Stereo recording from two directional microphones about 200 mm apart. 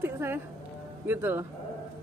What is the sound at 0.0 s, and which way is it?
Music, 10° right (ahead or behind).